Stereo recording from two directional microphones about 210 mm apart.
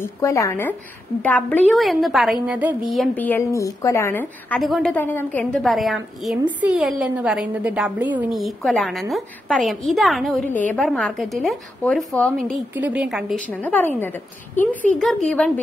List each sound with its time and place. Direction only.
0.0 s a woman's voice: 15° left (ahead or behind); by 13.4 s centre (ahead or behind)
13.5 s a woman's voice: 10° left (ahead or behind)